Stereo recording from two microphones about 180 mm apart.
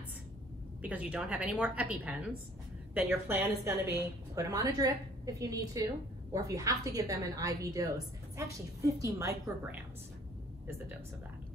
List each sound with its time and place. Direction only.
0.8 s a woman's voice: 10° right (ahead or behind)